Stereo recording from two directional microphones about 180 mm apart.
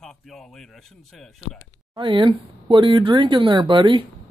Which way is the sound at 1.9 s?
25° right (ahead or behind).